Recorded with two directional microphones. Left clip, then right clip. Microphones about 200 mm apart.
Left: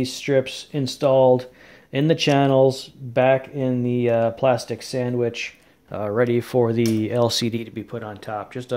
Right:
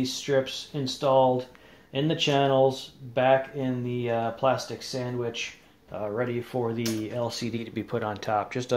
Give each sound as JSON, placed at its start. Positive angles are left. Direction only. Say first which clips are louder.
{"t": 0.0, "sound": "speech", "louder": "left 5 dB", "side_deg": 55}
{"t": 7.7, "sound": "speech", "louder": "right 2 dB", "side_deg": 10}